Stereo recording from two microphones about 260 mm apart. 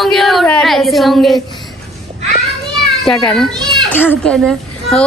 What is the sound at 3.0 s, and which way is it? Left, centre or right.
A woman's voice, centre.